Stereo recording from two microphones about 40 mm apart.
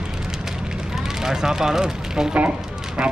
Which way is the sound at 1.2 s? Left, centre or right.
Centre.